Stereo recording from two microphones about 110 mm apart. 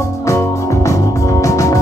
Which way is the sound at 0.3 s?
25° left (ahead or behind).